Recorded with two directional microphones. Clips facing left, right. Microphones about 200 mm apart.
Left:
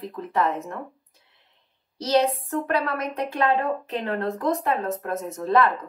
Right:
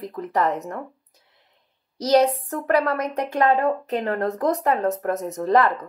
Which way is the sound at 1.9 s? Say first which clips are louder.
Right 4 dB; 40° right (ahead or behind).